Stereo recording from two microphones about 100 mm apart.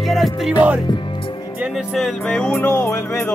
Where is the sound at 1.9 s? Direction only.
5° left (ahead or behind).